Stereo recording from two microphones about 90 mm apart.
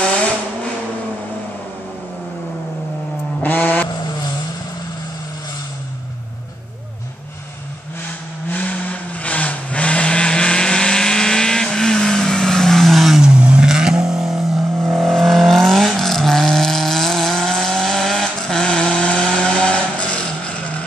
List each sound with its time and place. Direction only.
0.0 s vehicle: 10° left (ahead or behind)
3.4 s vehicle: 20° left (ahead or behind)
8.5 s vehicle: 15° left (ahead or behind)